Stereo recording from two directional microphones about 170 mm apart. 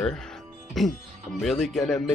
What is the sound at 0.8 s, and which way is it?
Speech, centre (ahead or behind).